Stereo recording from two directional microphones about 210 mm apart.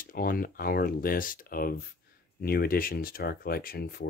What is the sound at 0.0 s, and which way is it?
Speech, 45° left (ahead or behind).